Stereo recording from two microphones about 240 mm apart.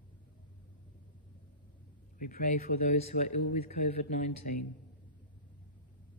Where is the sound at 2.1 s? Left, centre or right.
Left.